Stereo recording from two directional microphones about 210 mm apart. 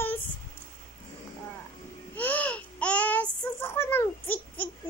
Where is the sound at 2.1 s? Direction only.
5° left (ahead or behind).